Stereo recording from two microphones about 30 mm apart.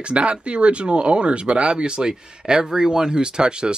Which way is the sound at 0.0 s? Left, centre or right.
Right.